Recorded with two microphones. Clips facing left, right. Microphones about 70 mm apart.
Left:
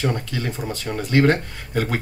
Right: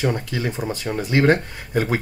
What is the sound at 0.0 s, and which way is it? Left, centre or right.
Speech, centre.